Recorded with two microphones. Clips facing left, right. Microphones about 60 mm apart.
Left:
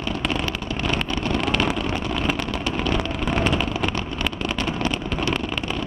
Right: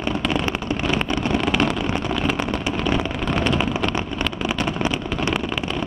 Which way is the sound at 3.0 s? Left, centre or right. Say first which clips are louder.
Right 1 dB; centre.